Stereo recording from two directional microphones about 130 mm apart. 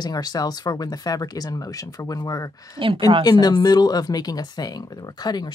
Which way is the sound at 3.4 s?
30° left (ahead or behind).